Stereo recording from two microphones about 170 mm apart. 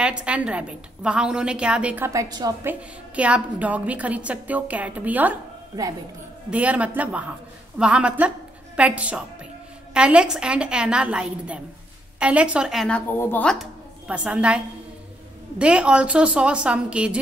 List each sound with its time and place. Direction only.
0.0 s a woman's voice: 5° right (ahead or behind)
2.0 s a woman's voice: 20° right (ahead or behind)
2.6 s a woman's voice: 10° right (ahead or behind)
6.5 s a woman's voice: 10° right (ahead or behind)
14.0 s a woman's voice: 5° right (ahead or behind)
15.6 s a woman's voice: 5° right (ahead or behind)